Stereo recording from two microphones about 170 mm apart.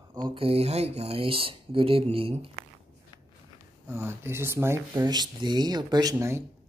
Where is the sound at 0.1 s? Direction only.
25° right (ahead or behind).